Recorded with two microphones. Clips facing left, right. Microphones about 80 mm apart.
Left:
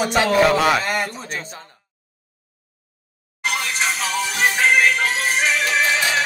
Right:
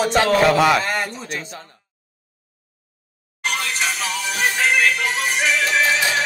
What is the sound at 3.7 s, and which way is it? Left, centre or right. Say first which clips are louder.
Music: left 2 dB; left.